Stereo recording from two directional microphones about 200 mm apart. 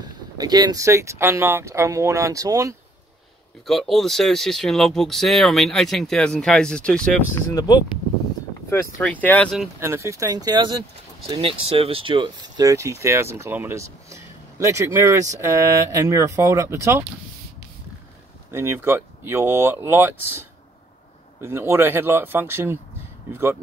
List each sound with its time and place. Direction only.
0.0 s speech: 20° right (ahead or behind)
3.6 s speech: centre (ahead or behind); by 7.8 s 20° left (ahead or behind)
9.0 s speech: 10° left (ahead or behind)
9.8 s speech: 15° right (ahead or behind)
18.5 s speech: 10° right (ahead or behind)